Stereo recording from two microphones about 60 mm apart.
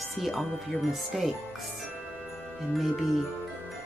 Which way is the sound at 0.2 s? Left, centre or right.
Centre.